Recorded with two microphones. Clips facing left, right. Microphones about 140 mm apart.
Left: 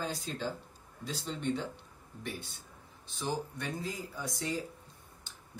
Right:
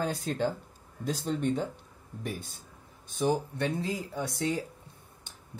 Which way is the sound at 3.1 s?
55° right (ahead or behind).